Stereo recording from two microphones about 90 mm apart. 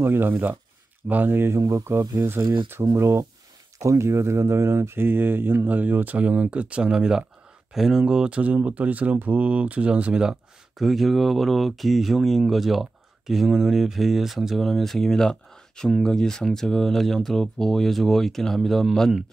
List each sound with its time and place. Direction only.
0.0 s speech: 25° right (ahead or behind)
2.4 s speech: 60° right (ahead or behind)
3.0 s speech: 30° right (ahead or behind); by 19.2 s centre (ahead or behind)